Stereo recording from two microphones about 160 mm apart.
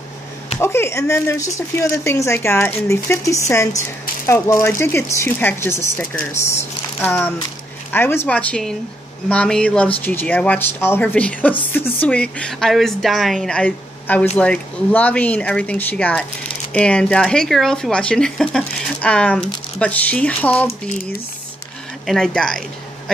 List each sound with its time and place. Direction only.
0.6 s speech: 15° left (ahead or behind)
22.0 s a woman's voice: 5° left (ahead or behind)